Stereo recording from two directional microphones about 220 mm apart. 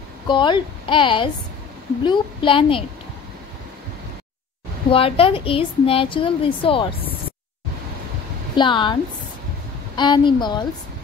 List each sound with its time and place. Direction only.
0.3 s a woman's voice: 20° left (ahead or behind)
4.9 s a woman's voice: 25° left (ahead or behind)
8.5 s a woman's voice: 20° left (ahead or behind)
9.9 s a woman's voice: 20° left (ahead or behind)